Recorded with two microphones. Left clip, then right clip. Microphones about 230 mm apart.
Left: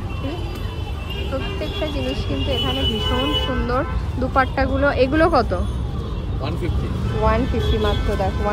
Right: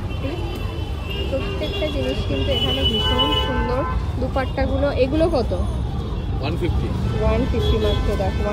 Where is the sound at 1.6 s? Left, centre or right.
Left.